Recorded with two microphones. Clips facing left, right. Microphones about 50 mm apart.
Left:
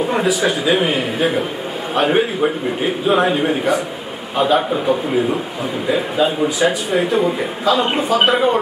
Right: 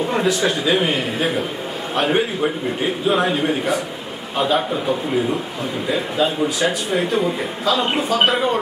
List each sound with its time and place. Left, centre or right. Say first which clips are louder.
0.0 s a man's voice: left 2 dB; centre